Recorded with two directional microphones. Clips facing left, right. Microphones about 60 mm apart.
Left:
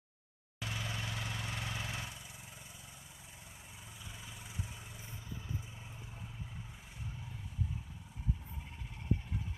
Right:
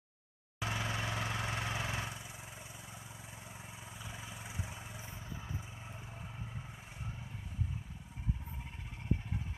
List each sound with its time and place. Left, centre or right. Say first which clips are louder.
0.6 s vehicle: right 4 dB; right
1.1 s vehicle: right 4 dB; right
1.5 s vehicle: right 4 dB; right